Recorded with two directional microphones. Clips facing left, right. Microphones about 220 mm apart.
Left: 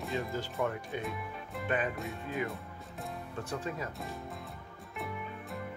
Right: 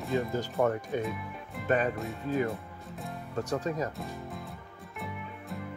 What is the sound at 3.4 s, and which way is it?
Speech, 40° right (ahead or behind).